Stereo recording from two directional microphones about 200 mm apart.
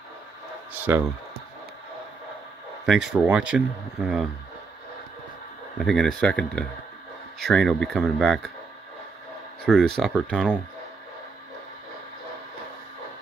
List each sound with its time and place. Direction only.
0.9 s speech: 10° right (ahead or behind)
2.9 s speech: centre (ahead or behind)
5.8 s speech: centre (ahead or behind)
9.7 s speech: centre (ahead or behind)